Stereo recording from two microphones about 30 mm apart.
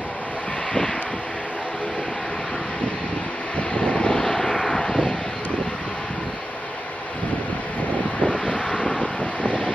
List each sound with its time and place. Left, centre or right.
3.5 s vehicle: left
4.2 s vehicle: centre
8.2 s vehicle: left
9.2 s vehicle: left